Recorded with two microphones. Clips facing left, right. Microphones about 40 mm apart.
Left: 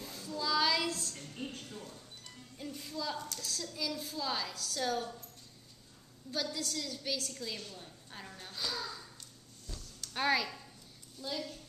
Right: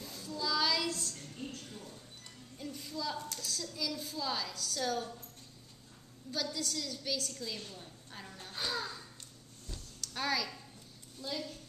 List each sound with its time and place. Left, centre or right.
0.0 s child singing: centre
0.9 s a sound: centre
1.3 s a sound: left
2.6 s music: centre
3.3 s a woman's voice: centre
6.3 s a woman's voice: centre
7.7 s a sound: centre
10.1 s speech: left
11.2 s a woman's voice: centre